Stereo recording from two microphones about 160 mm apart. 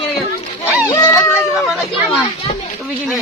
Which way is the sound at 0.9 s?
20° left (ahead or behind).